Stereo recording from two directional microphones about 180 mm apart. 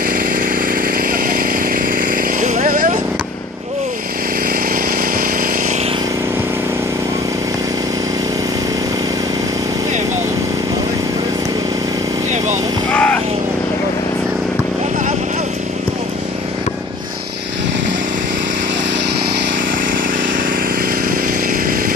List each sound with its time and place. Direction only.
1.1 s chainsaw: 50° right (ahead or behind)
12.9 s vehicle: 10° left (ahead or behind)